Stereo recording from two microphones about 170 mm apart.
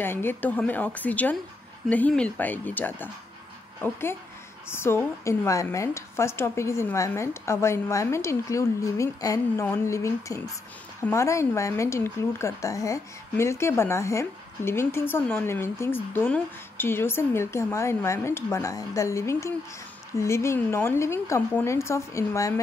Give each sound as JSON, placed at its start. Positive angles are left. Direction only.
{"t": 0.0, "sound": "speech", "side_deg": 15}